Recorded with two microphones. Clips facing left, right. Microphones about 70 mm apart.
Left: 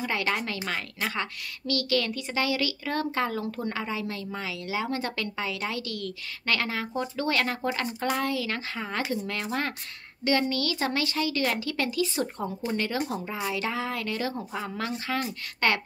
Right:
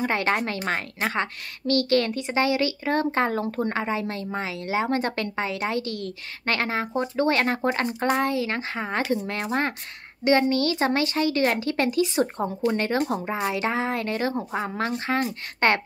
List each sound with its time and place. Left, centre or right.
0.0 s a woman's voice: right